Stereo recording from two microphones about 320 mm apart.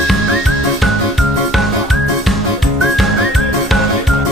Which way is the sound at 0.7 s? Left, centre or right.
Centre.